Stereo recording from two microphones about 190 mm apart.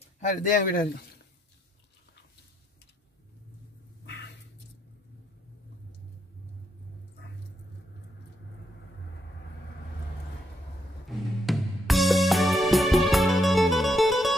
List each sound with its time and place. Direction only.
0.3 s speech: 45° left (ahead or behind)
4.0 s a sound: 65° left (ahead or behind)
11.1 s music: centre (ahead or behind)